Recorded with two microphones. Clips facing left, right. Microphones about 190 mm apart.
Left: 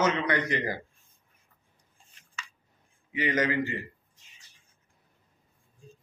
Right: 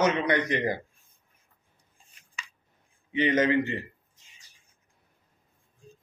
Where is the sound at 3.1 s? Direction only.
25° right (ahead or behind).